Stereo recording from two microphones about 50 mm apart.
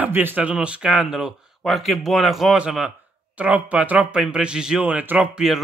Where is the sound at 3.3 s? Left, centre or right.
Right.